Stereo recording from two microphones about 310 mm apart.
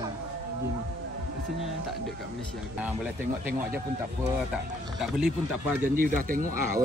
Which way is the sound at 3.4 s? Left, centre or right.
Centre.